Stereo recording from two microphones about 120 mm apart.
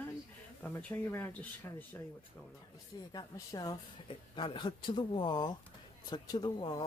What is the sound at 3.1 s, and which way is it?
Speech, 30° left (ahead or behind).